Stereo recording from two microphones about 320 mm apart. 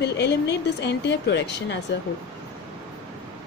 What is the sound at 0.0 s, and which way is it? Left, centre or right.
A woman's voice, left.